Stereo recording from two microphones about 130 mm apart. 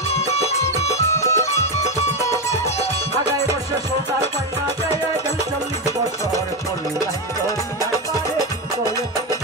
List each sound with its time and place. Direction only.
1.2 s music: 20° left (ahead or behind)